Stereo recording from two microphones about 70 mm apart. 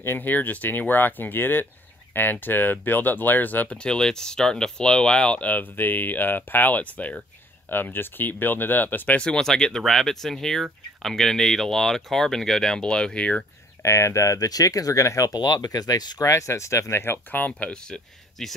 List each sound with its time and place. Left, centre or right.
0.0 s speech: left
3.7 s speech: centre
9.2 s speech: centre
13.8 s speech: left
15.3 s speech: left
16.3 s speech: left; by 18.5 s centre